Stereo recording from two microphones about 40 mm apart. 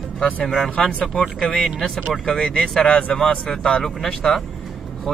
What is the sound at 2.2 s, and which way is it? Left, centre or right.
Speech, centre.